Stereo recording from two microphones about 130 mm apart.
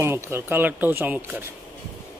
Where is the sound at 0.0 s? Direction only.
20° right (ahead or behind).